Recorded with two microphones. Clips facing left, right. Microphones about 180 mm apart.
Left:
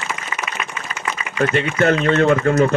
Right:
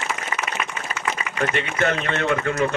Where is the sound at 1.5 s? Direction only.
40° left (ahead or behind).